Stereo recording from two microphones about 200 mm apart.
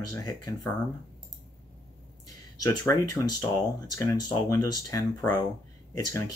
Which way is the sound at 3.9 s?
20° left (ahead or behind).